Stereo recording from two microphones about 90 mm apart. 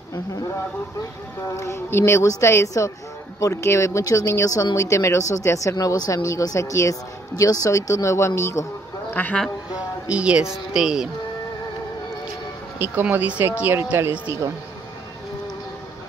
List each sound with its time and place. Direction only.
1.6 s speech: 30° left (ahead or behind)
9.1 s speech: 20° left (ahead or behind)
9.7 s speech: 15° right (ahead or behind)
12.7 s speech: 20° right (ahead or behind)